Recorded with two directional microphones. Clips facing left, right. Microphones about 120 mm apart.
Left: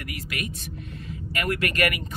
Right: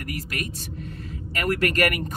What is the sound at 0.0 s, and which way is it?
Speech, 40° right (ahead or behind).